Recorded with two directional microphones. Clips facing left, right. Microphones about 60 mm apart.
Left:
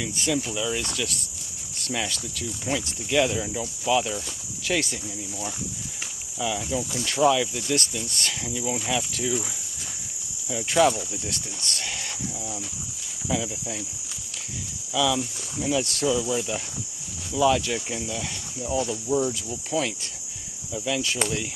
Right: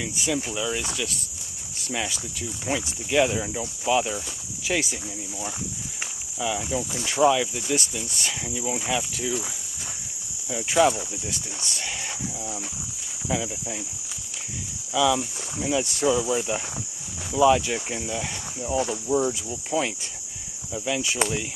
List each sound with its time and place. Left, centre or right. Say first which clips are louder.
0.2 s cricket: left 1 dB; centre
1.8 s speech: even; centre
2.6 s cricket: right 1 dB; centre
6.4 s cricket: even; centre
10.5 s cricket: even; centre
13.3 s cricket: even; centre
15.0 s cricket: right 2 dB; centre